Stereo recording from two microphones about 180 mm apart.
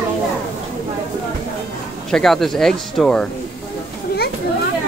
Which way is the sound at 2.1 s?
Centre (ahead or behind).